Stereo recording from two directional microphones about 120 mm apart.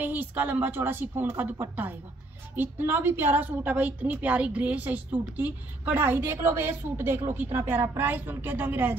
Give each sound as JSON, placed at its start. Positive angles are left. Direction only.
{"t": 0.0, "sound": "a woman's voice", "side_deg": -15}